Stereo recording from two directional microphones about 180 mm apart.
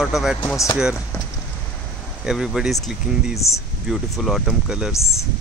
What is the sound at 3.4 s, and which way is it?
Speech, 15° left (ahead or behind).